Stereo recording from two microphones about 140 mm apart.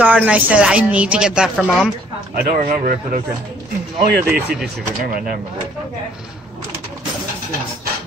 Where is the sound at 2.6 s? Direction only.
70° right (ahead or behind).